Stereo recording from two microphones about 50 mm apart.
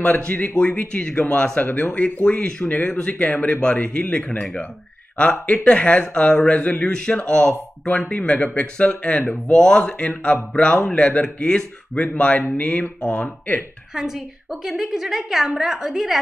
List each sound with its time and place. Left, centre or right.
0.3 s speech: left
13.1 s speech: left
13.9 s a woman's voice: centre